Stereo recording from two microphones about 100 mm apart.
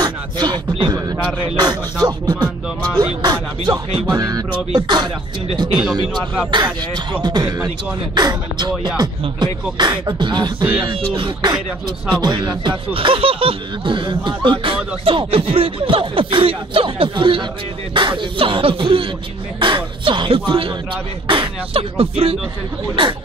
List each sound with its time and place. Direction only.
0.0 s rapping: 45° right (ahead or behind)
1.4 s speech: 45° right (ahead or behind)
4.1 s music: 40° right (ahead or behind)
4.7 s speech: 45° right (ahead or behind)
12.2 s speech: 45° right (ahead or behind)
12.6 s speech: 60° right (ahead or behind)